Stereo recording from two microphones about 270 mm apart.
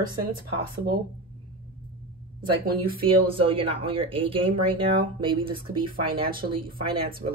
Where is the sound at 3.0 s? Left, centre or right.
Centre.